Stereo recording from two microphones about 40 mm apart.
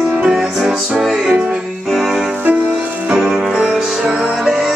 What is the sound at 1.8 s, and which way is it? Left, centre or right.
Music, centre.